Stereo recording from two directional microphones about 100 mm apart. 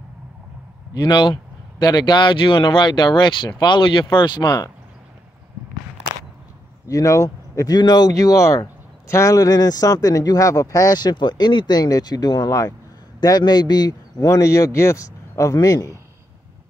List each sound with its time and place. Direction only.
1.0 s speech: 50° left (ahead or behind)
6.9 s speech: 35° left (ahead or behind)